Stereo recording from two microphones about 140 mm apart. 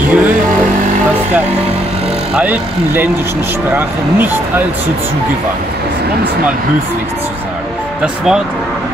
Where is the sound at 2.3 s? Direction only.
10° right (ahead or behind).